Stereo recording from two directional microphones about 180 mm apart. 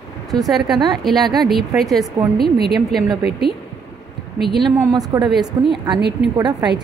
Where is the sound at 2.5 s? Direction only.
65° right (ahead or behind).